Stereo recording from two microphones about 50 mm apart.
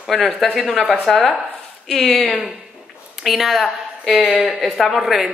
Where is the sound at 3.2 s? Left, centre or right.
Centre.